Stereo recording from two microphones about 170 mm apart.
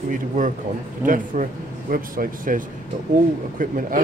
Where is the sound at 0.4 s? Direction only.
50° right (ahead or behind).